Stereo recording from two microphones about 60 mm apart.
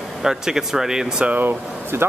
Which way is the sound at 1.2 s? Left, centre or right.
Right.